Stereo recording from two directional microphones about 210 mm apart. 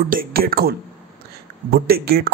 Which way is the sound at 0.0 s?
45° right (ahead or behind).